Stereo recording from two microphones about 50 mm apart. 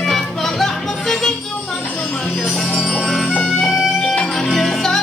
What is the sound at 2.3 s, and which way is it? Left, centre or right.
Music, centre.